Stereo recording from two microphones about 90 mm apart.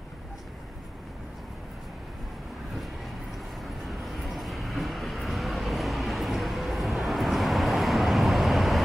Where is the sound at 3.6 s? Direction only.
Centre (ahead or behind).